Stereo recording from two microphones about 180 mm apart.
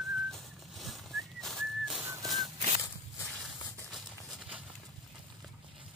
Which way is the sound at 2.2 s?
Centre (ahead or behind).